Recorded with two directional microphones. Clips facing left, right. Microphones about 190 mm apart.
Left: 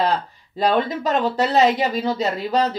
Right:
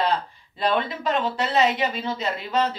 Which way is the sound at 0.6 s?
40° left (ahead or behind).